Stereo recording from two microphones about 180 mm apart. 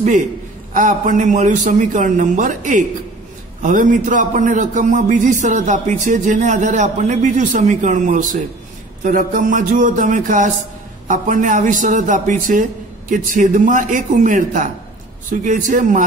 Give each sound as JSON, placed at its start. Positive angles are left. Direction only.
{"t": 0.7, "sound": "a man's voice", "side_deg": -45}